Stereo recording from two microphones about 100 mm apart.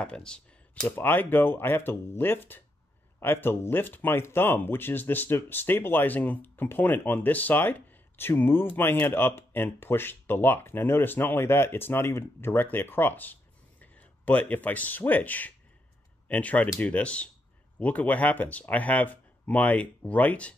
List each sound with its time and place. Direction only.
0.0 s speech: 10° left (ahead or behind)